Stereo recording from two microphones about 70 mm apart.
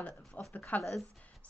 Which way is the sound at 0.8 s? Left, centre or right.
Centre.